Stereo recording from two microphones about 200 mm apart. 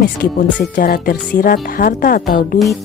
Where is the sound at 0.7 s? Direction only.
45° left (ahead or behind).